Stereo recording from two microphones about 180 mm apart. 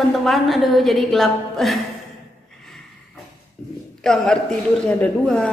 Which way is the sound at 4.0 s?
5° left (ahead or behind).